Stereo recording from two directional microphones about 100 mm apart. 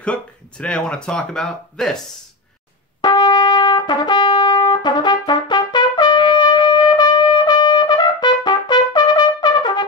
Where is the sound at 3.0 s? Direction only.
45° left (ahead or behind).